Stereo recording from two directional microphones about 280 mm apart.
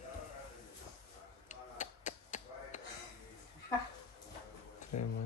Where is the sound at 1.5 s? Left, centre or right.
Left.